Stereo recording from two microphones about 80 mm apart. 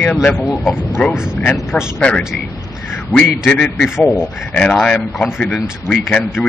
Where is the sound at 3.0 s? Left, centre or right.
Centre.